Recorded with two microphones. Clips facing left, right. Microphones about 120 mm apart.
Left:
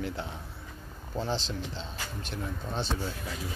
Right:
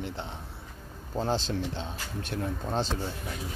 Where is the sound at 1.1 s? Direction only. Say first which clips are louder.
Right 4 dB; 45° right (ahead or behind).